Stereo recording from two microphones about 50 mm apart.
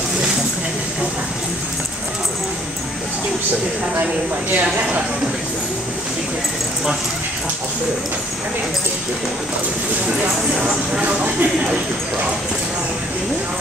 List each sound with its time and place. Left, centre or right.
4.0 s speech: right
10.6 s speech: right